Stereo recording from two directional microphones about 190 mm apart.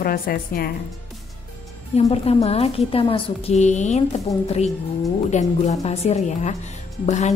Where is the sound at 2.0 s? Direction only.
35° left (ahead or behind).